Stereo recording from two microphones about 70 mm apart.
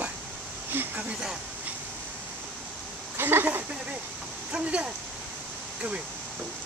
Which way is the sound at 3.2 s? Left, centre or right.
Right.